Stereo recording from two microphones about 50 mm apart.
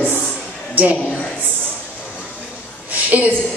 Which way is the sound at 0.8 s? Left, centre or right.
Right.